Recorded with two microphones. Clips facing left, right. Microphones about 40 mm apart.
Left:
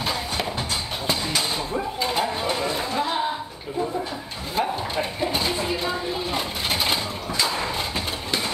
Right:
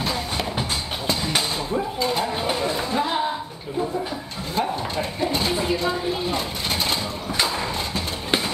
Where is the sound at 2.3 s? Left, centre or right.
Centre.